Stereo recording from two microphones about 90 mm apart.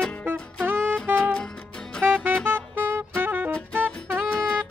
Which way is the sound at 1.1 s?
10° left (ahead or behind).